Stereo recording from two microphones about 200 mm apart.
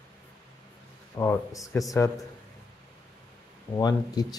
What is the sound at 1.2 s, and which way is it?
Speech, 15° left (ahead or behind).